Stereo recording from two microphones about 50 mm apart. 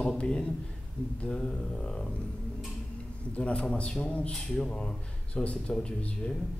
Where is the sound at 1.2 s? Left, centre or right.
Left.